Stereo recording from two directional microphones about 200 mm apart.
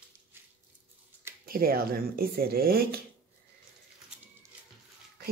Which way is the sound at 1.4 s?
45° right (ahead or behind).